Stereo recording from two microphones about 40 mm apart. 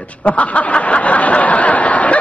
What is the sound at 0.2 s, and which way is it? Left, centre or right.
Snicker, left.